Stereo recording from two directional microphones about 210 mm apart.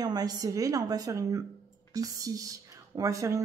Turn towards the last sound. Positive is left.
turn(degrees=-15)  # may be behind; listen again after turning